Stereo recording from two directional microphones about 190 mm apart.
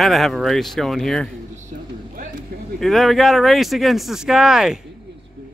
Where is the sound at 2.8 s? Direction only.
Centre (ahead or behind).